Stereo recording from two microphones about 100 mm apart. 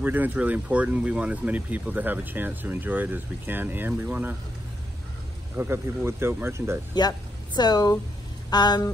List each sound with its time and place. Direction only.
0.0 s speech: 20° right (ahead or behind)
5.6 s speech: 25° right (ahead or behind)
6.9 s speech: 45° left (ahead or behind)
8.5 s a sound: 45° left (ahead or behind)